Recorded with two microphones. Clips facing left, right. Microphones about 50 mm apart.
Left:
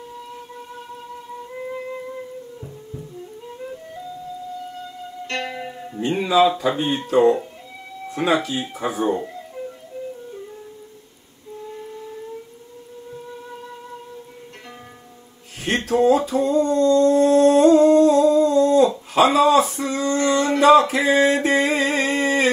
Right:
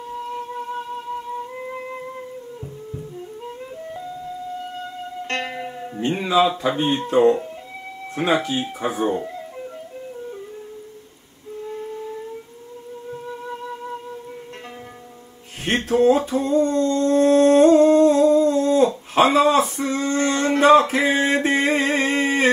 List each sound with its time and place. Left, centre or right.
5.2 s music: right
5.6 s music: centre
6.0 s speech: right
7.2 s speech: centre
8.2 s speech: right
9.0 s speech: centre
15.6 s a sound: right